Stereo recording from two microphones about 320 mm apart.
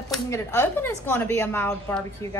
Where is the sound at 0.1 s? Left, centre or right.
Centre.